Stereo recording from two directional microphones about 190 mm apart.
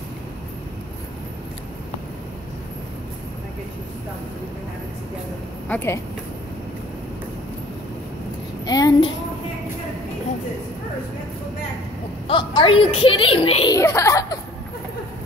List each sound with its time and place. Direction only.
5.7 s speech: 10° left (ahead or behind)
8.6 s child singing: 20° left (ahead or behind)
12.3 s a child's voice: 25° left (ahead or behind)
13.7 s a sound: 15° left (ahead or behind)